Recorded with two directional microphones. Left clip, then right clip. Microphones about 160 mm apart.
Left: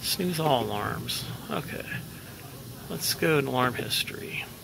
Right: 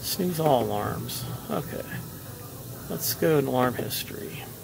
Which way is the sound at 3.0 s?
10° right (ahead or behind).